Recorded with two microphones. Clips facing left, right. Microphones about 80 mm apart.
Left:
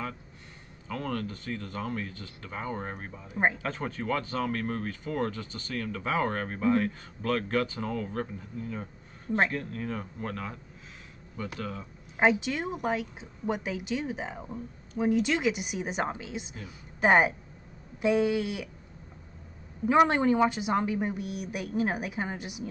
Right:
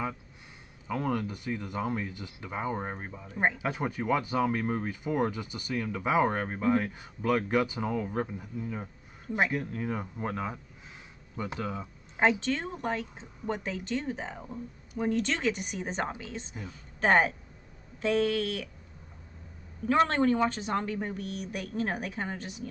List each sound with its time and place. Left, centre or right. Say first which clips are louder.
0.8 s speech: right 3 dB; centre
3.3 s speech: left 2 dB; centre
3.5 s speech: right 2 dB; centre
12.2 s a woman's voice: left 1 dB; centre
19.9 s speech: left 2 dB; centre